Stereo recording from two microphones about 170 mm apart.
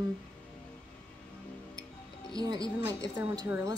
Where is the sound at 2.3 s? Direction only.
20° right (ahead or behind).